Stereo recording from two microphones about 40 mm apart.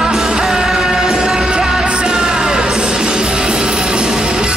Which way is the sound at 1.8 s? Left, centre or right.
Right.